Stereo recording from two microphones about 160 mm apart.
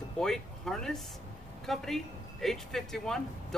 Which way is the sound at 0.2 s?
5° left (ahead or behind).